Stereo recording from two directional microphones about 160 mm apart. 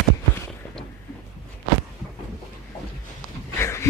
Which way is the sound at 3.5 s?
15° left (ahead or behind).